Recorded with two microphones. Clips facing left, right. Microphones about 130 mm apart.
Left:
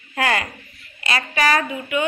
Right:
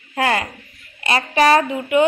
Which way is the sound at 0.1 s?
25° right (ahead or behind).